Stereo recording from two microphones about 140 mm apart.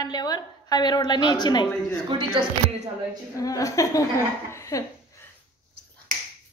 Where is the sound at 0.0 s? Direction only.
30° left (ahead or behind).